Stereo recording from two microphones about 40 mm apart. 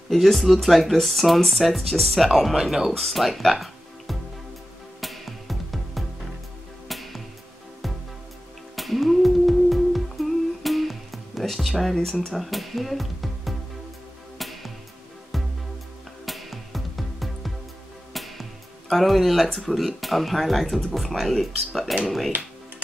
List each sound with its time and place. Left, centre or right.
0.1 s speech: centre
3.0 s speech: centre
5.0 s music: centre
8.7 s humming: centre
12.1 s speech: centre
12.4 s speech: centre
14.4 s music: centre
19.7 s speech: centre